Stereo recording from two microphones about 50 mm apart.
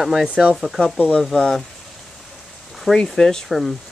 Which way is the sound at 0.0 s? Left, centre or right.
Centre.